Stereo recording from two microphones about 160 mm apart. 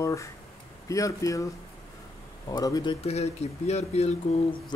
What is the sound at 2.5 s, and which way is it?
Speech, 25° left (ahead or behind).